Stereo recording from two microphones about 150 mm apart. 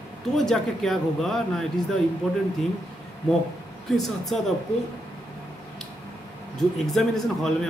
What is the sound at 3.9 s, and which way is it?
Speech, centre (ahead or behind).